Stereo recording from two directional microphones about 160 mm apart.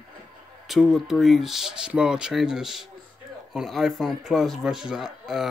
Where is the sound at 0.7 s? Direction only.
Centre (ahead or behind).